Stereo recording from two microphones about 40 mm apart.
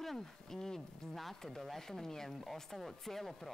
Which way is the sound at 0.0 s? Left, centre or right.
Centre.